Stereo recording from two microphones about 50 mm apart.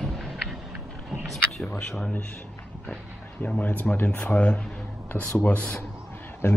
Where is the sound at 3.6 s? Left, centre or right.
Left.